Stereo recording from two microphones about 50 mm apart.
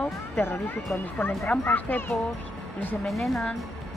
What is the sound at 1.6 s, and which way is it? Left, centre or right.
Speech, left.